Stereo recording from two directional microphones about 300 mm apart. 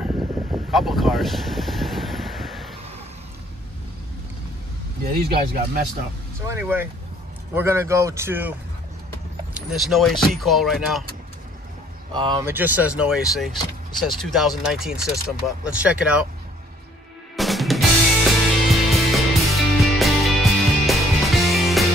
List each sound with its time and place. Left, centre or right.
0.0 s vehicle: centre
5.1 s speech: right
6.4 s a man's voice: centre
12.1 s speech: centre
17.4 s music: centre